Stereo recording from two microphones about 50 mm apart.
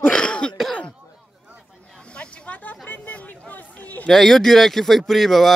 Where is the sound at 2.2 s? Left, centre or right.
Left.